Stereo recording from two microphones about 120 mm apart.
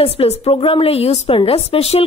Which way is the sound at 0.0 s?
55° left (ahead or behind).